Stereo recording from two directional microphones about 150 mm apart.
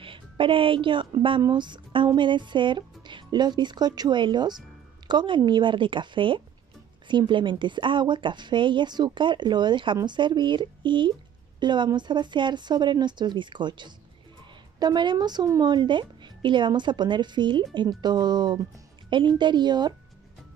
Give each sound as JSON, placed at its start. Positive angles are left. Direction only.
{"t": 0.0, "sound": "a woman's voice", "side_deg": -35}